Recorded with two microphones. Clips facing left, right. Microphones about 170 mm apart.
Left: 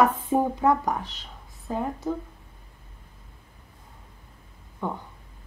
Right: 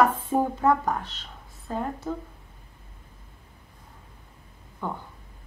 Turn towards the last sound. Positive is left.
turn(degrees=15)  # may be behind; listen again after turning